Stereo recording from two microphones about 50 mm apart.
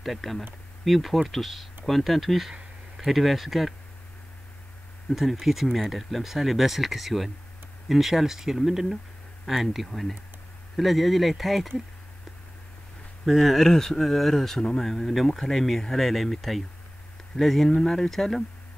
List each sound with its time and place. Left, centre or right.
0.0 s speech: centre
5.1 s speech: centre
13.2 s speech: centre